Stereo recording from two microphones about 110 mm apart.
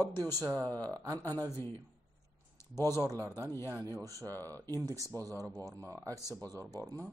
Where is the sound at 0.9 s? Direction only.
30° right (ahead or behind).